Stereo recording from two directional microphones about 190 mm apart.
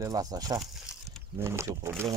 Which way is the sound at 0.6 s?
Centre (ahead or behind).